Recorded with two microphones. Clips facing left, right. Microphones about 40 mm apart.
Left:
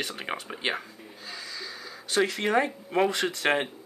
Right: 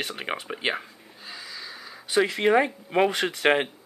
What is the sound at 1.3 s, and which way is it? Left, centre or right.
Gasp, centre.